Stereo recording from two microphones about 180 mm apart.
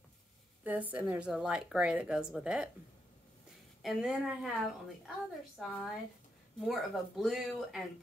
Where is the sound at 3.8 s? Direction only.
Centre (ahead or behind).